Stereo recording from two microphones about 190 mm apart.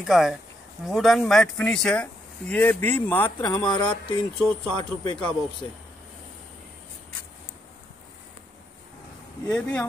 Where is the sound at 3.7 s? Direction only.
25° left (ahead or behind).